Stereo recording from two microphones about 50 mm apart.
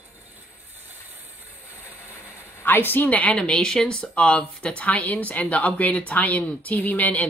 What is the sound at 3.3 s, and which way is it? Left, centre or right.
Speech, centre.